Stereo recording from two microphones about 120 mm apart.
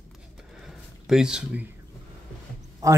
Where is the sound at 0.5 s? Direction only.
5° right (ahead or behind).